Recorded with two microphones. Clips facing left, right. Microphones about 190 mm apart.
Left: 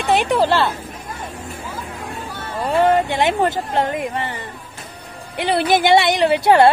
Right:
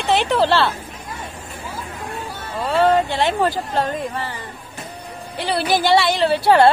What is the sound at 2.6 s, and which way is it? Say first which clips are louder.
Speech: left 1 dB; 15° left (ahead or behind).